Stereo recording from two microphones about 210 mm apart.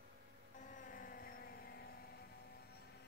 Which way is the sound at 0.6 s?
40° left (ahead or behind).